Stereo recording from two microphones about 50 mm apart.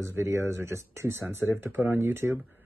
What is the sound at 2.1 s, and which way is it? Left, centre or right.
Speech, right.